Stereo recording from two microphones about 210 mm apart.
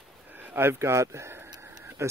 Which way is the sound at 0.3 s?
10° right (ahead or behind).